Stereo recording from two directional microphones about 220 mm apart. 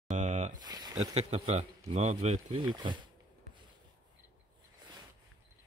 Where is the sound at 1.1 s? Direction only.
30° right (ahead or behind).